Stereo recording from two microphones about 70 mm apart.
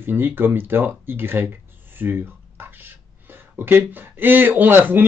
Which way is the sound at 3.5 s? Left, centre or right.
Right.